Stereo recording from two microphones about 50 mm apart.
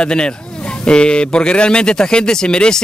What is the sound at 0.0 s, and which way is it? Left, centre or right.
A man's voice, centre.